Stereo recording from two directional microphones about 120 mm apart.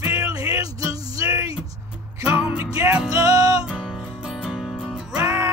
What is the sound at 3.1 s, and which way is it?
Music, 30° right (ahead or behind).